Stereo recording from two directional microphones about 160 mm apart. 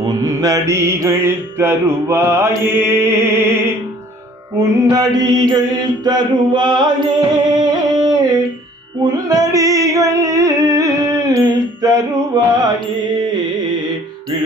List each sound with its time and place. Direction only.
0.2 s music: 20° right (ahead or behind)
4.6 s mantra: 20° right (ahead or behind)
9.0 s music: 20° right (ahead or behind)
12.3 s mantra: 25° right (ahead or behind)
13.2 s carnatic music: 25° right (ahead or behind)